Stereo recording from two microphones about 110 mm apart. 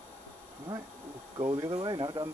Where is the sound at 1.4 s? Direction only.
25° right (ahead or behind).